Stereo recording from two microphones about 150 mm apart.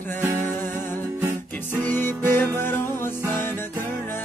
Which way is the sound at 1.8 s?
15° left (ahead or behind).